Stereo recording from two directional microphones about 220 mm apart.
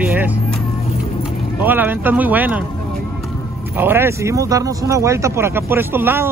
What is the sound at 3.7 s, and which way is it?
Speech, 10° right (ahead or behind).